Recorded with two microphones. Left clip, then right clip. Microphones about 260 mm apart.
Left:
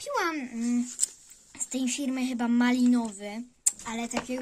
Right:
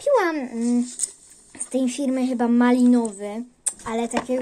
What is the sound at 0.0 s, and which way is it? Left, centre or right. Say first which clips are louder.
A child's voice: right 10 dB; left.